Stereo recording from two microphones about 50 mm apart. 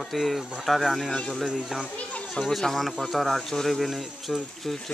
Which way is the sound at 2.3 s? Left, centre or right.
Centre.